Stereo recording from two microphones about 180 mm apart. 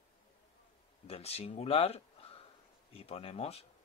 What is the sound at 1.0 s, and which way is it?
Speech, 35° left (ahead or behind).